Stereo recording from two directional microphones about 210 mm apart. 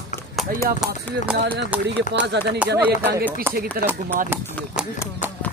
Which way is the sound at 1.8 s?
55° right (ahead or behind).